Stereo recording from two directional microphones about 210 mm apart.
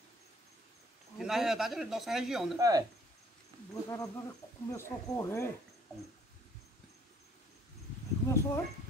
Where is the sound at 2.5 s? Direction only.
15° right (ahead or behind).